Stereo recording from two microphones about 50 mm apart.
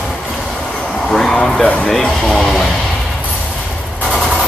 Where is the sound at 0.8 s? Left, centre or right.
Centre.